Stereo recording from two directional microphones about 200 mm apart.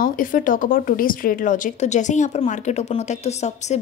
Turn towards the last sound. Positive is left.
turn(degrees=35)  # may be behind; listen again after turning